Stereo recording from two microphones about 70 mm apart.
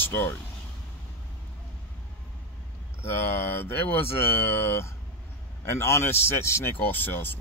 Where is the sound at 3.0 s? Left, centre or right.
Left.